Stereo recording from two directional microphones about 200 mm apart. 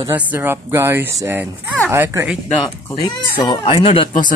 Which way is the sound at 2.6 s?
10° left (ahead or behind).